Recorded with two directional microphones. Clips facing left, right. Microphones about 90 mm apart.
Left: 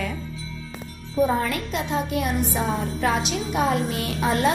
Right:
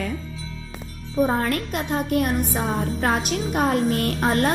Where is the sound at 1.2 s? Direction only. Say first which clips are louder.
Right 1 dB; 50° right (ahead or behind).